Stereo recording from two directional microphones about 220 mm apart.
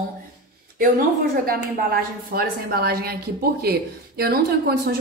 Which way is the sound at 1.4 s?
40° right (ahead or behind).